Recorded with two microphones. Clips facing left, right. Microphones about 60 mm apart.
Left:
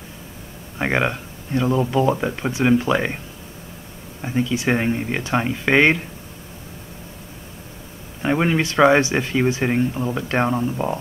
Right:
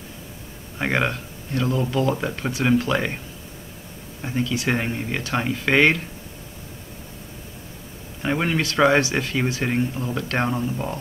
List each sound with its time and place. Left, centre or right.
0.7 s speech: centre
4.2 s speech: centre
8.2 s speech: centre